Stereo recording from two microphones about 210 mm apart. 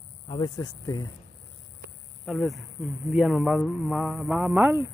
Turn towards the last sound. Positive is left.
turn(degrees=-10)  # may be behind; listen again after turning